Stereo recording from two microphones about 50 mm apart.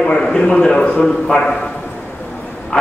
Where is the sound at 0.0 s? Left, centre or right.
Centre.